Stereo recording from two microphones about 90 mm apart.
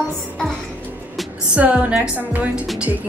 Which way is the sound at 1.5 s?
15° right (ahead or behind).